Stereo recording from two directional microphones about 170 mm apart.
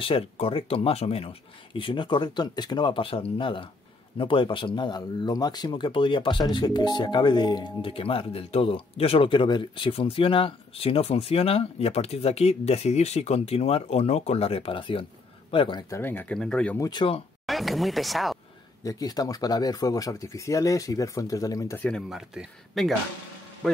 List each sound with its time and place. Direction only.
0.0 s speech: 30° left (ahead or behind)
15.9 s speech: 10° left (ahead or behind)
16.8 s speech: 30° left (ahead or behind)
17.5 s speech: centre (ahead or behind)
18.8 s speech: 20° left (ahead or behind)
21.8 s speech: centre (ahead or behind)